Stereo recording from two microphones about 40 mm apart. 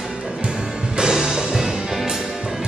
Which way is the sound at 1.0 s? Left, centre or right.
Centre.